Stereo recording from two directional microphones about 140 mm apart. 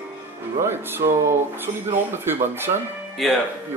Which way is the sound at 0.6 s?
15° right (ahead or behind).